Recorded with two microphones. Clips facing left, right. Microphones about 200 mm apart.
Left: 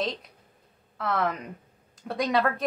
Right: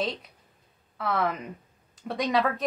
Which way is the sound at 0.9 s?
Centre (ahead or behind).